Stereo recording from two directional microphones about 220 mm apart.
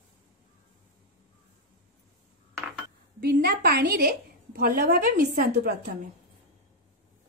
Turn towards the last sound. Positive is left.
turn(degrees=-40)  # may be behind; listen again after turning